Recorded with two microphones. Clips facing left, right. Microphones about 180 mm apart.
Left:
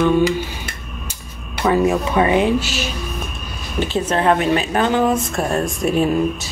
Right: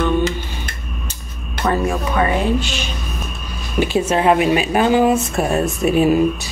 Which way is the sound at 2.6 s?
5° left (ahead or behind).